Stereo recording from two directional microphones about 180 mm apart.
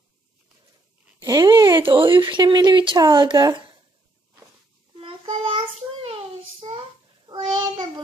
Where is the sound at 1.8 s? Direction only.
30° right (ahead or behind).